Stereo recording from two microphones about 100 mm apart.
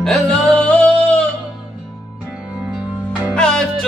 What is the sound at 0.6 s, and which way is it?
Music, 15° left (ahead or behind).